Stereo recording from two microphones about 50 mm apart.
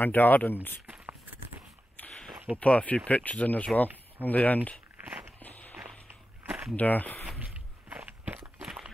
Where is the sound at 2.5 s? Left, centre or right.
Left.